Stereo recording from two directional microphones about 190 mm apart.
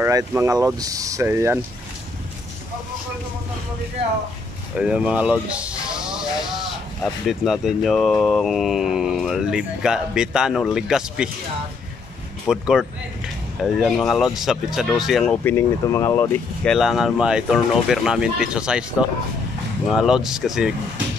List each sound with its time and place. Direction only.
0.0 s speech: 15° right (ahead or behind)
4.7 s speech: 5° right (ahead or behind)
12.4 s speech: 5° right (ahead or behind)
15.4 s speech: 15° left (ahead or behind)
16.6 s speech: centre (ahead or behind)